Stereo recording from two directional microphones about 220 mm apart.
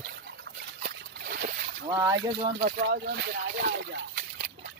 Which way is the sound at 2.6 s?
40° right (ahead or behind).